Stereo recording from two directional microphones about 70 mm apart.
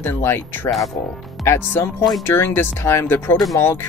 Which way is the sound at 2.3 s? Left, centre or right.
Left.